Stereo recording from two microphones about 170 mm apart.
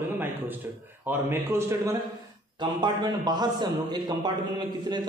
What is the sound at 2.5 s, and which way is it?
A man's voice, 25° right (ahead or behind).